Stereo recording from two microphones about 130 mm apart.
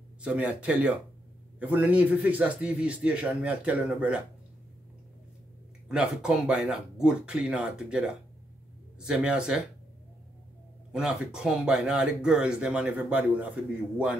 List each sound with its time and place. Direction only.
0.2 s a man's voice: 10° right (ahead or behind)
5.9 s a man's voice: 5° right (ahead or behind)
10.9 s speech: 5° right (ahead or behind)